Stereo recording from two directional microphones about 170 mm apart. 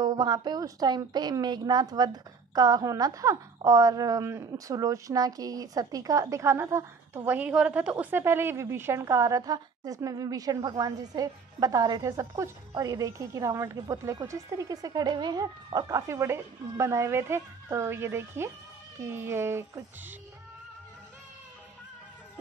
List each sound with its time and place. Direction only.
0.0 s a woman's voice: 25° right (ahead or behind)